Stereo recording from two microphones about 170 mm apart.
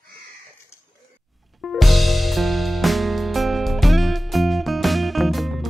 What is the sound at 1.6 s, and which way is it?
Music, centre (ahead or behind).